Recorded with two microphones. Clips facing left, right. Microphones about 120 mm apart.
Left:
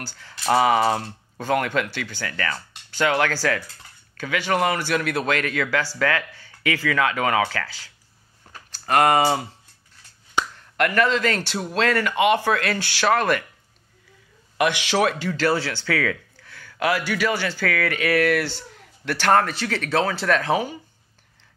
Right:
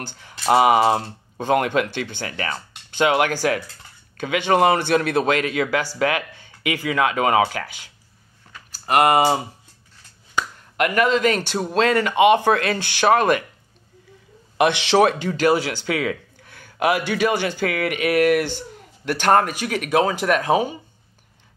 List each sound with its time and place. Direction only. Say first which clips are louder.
0.0 s speech: right 3 dB; 20° right (ahead or behind)
10.8 s speech: right 2 dB; 15° right (ahead or behind)
11.5 s speech: right 4 dB; 30° right (ahead or behind)
11.8 s speech: right 4 dB; 20° right (ahead or behind)
14.6 s speech: right 4 dB; 25° right (ahead or behind)